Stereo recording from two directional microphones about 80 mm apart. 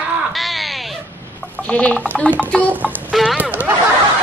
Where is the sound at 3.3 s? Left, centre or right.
Centre.